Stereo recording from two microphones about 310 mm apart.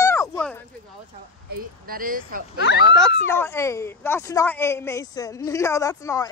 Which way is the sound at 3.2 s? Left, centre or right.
Centre.